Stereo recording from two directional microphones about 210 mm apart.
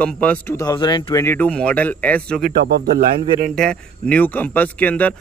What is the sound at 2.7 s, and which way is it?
Speech, 45° right (ahead or behind).